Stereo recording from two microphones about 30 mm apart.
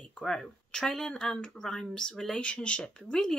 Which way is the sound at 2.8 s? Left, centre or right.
Left.